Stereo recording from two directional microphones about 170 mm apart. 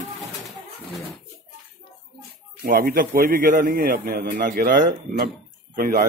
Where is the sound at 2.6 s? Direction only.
55° right (ahead or behind).